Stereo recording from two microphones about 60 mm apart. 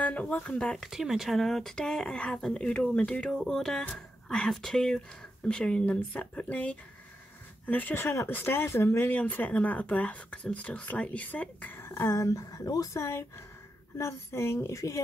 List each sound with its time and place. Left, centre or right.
0.0 s speech: left
0.7 s speech: centre; by 7.9 s left
7.9 s speech: left
9.1 s speech: left
11.7 s a woman's voice: left